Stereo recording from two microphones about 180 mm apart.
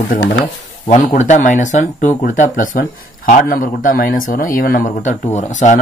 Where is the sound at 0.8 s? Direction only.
45° left (ahead or behind).